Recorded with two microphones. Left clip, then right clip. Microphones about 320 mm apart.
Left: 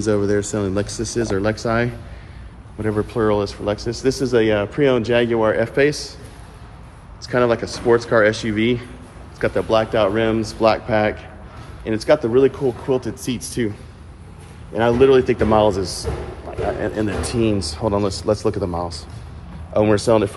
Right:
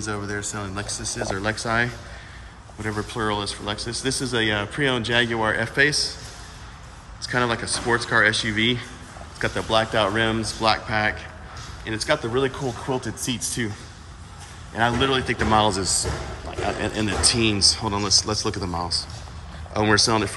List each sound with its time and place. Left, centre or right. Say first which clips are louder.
0.6 s speech: left 8 dB; centre
7.2 s speech: left 5 dB; centre
14.8 s speech: left 7 dB; centre
15.8 s speech: even; centre
16.8 s speech: even; centre